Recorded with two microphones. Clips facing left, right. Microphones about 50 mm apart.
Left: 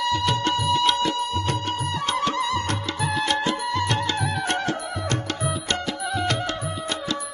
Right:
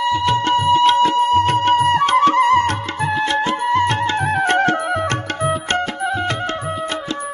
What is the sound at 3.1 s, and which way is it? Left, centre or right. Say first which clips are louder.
Music: right 5 dB; right.